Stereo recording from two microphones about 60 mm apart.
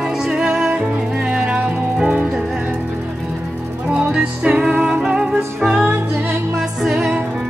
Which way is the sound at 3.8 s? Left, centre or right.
Centre.